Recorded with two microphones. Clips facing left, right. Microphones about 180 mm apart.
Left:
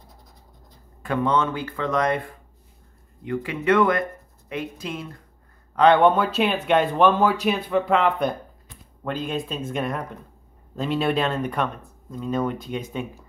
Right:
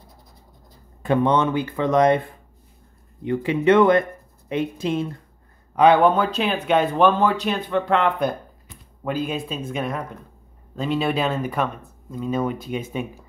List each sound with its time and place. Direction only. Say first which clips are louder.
1.0 s speech: right 4 dB; 20° right (ahead or behind)
5.8 s speech: right 1 dB; 5° right (ahead or behind)